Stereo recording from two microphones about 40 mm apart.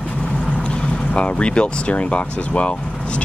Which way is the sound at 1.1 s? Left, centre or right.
Left.